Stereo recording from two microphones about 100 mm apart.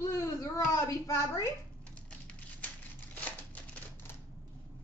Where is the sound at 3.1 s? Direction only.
15° left (ahead or behind).